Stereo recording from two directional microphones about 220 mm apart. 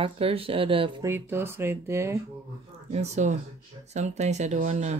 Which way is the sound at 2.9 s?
30° right (ahead or behind).